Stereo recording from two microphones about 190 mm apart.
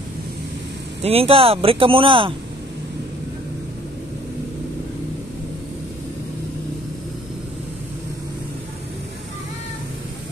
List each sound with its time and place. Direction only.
1.0 s speech: 30° right (ahead or behind)